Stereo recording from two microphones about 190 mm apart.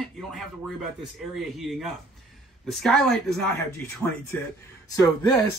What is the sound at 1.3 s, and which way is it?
Speech, centre (ahead or behind).